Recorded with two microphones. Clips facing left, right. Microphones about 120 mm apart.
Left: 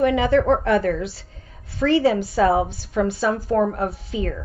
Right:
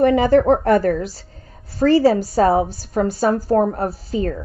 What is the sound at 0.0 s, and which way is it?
A woman's voice, 40° right (ahead or behind).